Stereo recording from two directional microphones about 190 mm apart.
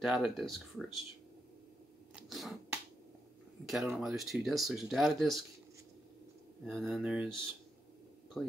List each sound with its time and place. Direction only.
0.0 s speech: centre (ahead or behind)
2.1 s chewing: centre (ahead or behind)
3.6 s speech: centre (ahead or behind)
6.7 s speech: centre (ahead or behind)
8.3 s speech: 5° left (ahead or behind)